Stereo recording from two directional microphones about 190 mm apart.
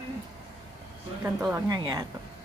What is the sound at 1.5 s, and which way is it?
Speech, 20° right (ahead or behind).